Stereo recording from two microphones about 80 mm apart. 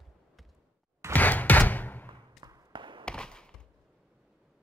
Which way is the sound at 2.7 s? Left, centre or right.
Right.